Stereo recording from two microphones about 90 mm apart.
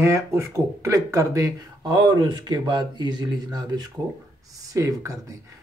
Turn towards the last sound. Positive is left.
turn(degrees=-40)  # may be behind; listen again after turning